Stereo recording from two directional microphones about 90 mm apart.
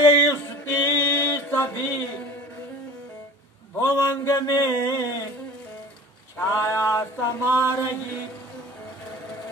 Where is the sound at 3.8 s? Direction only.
30° left (ahead or behind).